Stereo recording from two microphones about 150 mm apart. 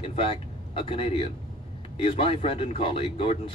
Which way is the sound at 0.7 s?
35° left (ahead or behind).